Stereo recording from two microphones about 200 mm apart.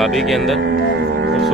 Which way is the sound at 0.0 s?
Centre (ahead or behind).